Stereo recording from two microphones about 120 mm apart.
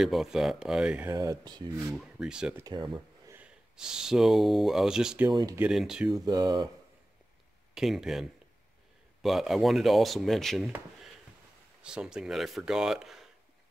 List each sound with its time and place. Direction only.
0.0 s speech: 5° right (ahead or behind)
1.1 s speech: 30° right (ahead or behind)
1.9 s speech: 5° right (ahead or behind)
2.6 s speech: 40° right (ahead or behind)
3.3 s speech: 5° right (ahead or behind)
5.3 s speech: 35° right (ahead or behind)
5.7 s speech: 5° right (ahead or behind)
6.1 s speech: 30° right (ahead or behind)
7.7 s speech: 5° right (ahead or behind)
11.8 s speech: 5° right (ahead or behind)